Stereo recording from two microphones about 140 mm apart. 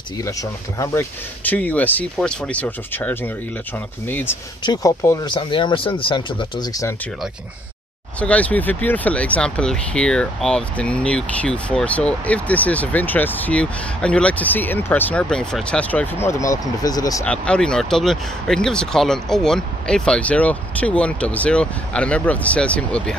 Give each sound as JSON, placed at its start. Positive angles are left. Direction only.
{"t": 0.2, "sound": "speech", "side_deg": 20}
{"t": 5.3, "sound": "speech", "side_deg": 35}
{"t": 8.2, "sound": "speech", "side_deg": 10}
{"t": 17.3, "sound": "speech", "side_deg": 5}